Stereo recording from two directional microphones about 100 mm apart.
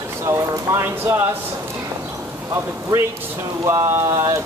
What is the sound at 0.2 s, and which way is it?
Speech, 30° right (ahead or behind).